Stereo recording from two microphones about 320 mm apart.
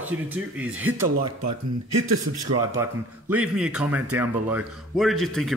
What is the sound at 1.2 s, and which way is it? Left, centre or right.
Speech, right.